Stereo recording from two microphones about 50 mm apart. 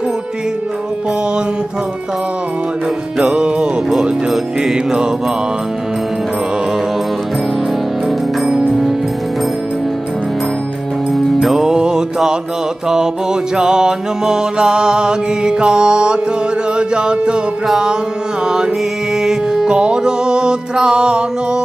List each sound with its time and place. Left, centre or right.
3.2 s music: centre
8.5 s music: centre
11.5 s music: centre
19.2 s music: centre